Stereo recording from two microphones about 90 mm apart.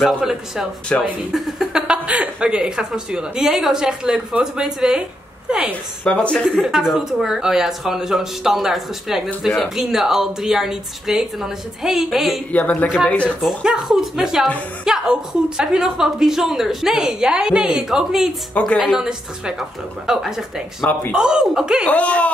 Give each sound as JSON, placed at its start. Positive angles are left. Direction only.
{"t": 0.0, "sound": "a woman's voice", "side_deg": -5}
{"t": 0.9, "sound": "speech", "side_deg": 15}
{"t": 1.3, "sound": "speech", "side_deg": -5}
{"t": 6.0, "sound": "speech", "side_deg": 10}
{"t": 6.4, "sound": "a woman's voice", "side_deg": -5}
{"t": 12.5, "sound": "speech", "side_deg": 20}
{"t": 13.4, "sound": "a woman's voice", "side_deg": -5}
{"t": 21.8, "sound": "speech", "side_deg": 15}